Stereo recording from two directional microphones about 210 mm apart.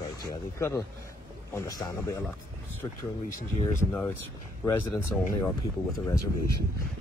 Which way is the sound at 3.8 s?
10° left (ahead or behind).